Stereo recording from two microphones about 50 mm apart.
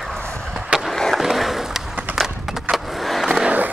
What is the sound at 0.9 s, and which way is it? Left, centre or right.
Skateboard, centre.